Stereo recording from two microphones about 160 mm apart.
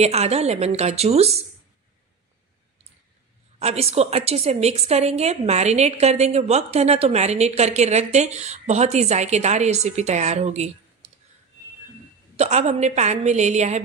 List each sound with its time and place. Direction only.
0.0 s a woman's voice: 40° right (ahead or behind)
3.5 s a woman's voice: 40° right (ahead or behind)
12.4 s a woman's voice: 45° right (ahead or behind)